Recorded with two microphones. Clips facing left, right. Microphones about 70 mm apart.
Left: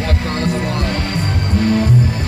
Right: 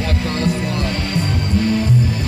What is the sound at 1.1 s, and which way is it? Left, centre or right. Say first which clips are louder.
Music: even; left.